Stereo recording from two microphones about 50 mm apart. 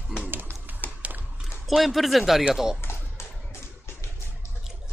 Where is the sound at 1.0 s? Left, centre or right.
Right.